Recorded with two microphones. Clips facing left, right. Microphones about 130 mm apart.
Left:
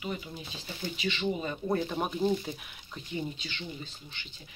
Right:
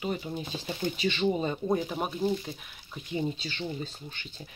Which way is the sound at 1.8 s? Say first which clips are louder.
Even; 5° right (ahead or behind).